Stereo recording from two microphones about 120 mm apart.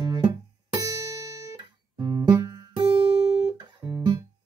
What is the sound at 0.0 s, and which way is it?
Music, 40° right (ahead or behind).